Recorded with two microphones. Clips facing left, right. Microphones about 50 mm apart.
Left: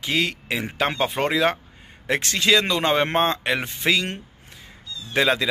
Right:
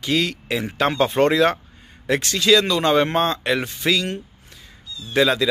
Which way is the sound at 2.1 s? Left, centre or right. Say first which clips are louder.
Right 3 dB; left.